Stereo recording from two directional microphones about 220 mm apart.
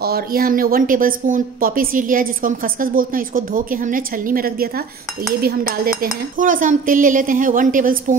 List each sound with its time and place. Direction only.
0.0 s speech: 45° right (ahead or behind)